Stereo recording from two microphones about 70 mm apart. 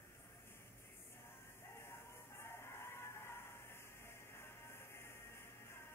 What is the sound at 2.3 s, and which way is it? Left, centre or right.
Music, left.